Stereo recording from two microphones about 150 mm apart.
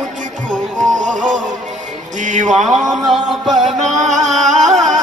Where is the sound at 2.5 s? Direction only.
Centre (ahead or behind).